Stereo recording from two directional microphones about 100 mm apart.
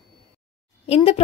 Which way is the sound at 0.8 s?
85° left.